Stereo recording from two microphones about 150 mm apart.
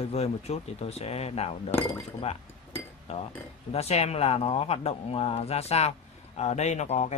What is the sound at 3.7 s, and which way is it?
Speech, 45° left (ahead or behind).